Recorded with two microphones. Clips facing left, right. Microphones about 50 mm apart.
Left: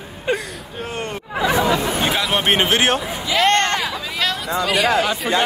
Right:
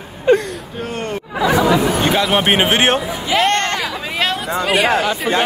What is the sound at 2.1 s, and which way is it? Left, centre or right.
Speech, centre.